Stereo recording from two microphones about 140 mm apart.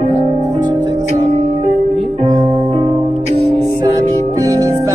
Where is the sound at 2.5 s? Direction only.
35° right (ahead or behind).